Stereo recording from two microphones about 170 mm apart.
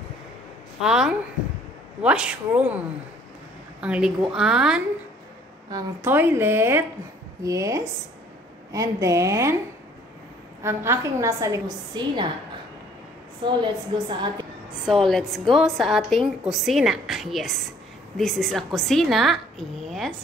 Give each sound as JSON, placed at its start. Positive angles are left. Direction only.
{"t": 0.7, "sound": "a woman's voice", "side_deg": -5}
{"t": 3.8, "sound": "a woman's voice", "side_deg": -5}
{"t": 10.6, "sound": "a woman's voice", "side_deg": -15}
{"t": 13.4, "sound": "a woman's voice", "side_deg": -25}
{"t": 14.9, "sound": "a woman's voice", "side_deg": 0}